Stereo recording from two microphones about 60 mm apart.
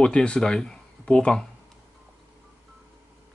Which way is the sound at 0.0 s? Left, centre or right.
Centre.